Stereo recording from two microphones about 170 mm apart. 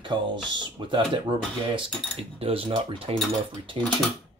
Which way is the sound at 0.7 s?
30° right (ahead or behind).